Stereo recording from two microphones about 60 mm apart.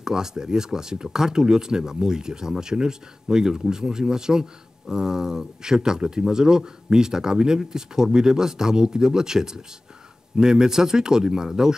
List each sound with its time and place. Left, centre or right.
0.0 s speech: centre